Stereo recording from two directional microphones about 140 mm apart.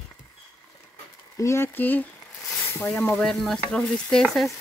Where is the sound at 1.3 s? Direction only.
20° left (ahead or behind).